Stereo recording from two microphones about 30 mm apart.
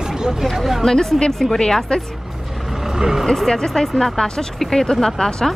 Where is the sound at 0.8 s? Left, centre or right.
Left.